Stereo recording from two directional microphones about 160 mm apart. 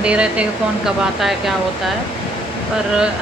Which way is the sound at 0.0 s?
5° right (ahead or behind).